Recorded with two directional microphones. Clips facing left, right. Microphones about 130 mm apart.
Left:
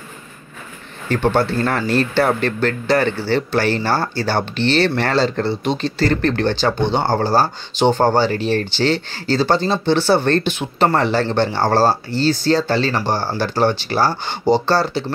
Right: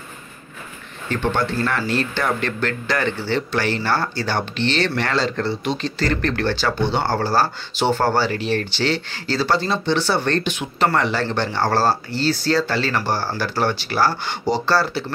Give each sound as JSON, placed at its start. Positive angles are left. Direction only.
{"t": 1.1, "sound": "speech", "side_deg": 35}
{"t": 8.3, "sound": "speech", "side_deg": 35}